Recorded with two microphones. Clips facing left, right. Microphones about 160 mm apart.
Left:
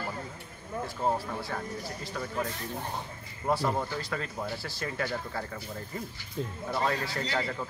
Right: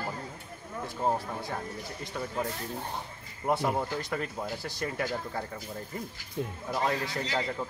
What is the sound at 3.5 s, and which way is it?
A man's voice, 15° right (ahead or behind).